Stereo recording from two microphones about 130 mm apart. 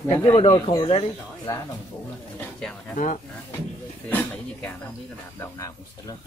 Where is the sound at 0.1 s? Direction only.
30° left (ahead or behind).